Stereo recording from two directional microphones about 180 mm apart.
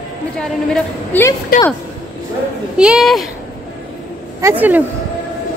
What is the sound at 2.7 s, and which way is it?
Speech, 5° right (ahead or behind).